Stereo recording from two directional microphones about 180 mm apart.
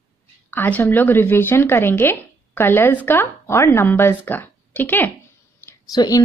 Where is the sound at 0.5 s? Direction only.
10° left (ahead or behind).